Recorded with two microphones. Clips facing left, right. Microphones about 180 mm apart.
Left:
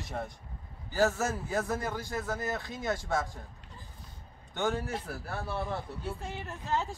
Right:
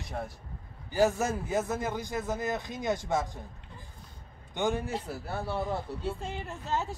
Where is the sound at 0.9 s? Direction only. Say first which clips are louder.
Right 2 dB; 15° right (ahead or behind).